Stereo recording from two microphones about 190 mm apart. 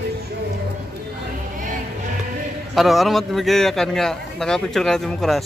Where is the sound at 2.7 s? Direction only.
Centre (ahead or behind).